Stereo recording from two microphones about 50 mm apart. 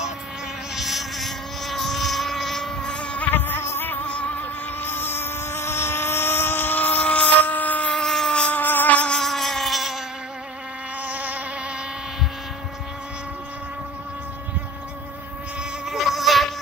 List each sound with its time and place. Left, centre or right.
0.7 s motorboat: centre; by 3.3 s left
3.3 s insect: left
3.6 s music: left
4.0 s music: left
4.8 s vehicle: left
7.9 s vehicle: centre
8.5 s music: left
9.1 s a sound: centre
11.1 s vehicle: right
15.9 s goat: centre